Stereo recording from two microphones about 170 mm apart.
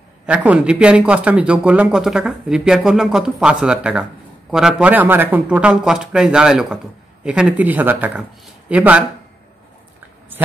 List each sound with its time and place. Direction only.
0.3 s a man's voice: 10° right (ahead or behind)